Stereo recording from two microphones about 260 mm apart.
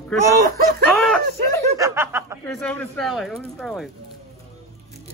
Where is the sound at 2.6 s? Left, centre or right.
Centre.